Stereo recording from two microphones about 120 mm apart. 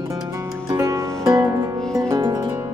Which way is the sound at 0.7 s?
25° right (ahead or behind).